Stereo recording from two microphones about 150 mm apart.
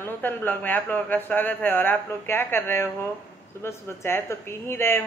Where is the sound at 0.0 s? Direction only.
15° left (ahead or behind).